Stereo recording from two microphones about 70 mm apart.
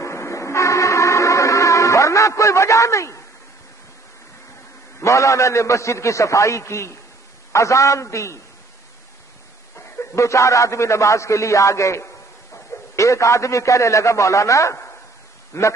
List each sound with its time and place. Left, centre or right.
0.0 s music: left
5.0 s a man's voice: left
9.8 s a man's voice: left